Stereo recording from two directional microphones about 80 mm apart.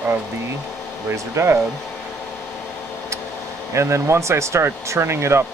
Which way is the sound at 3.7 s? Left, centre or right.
Right.